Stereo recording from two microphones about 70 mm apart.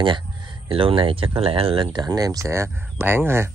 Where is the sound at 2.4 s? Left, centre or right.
Right.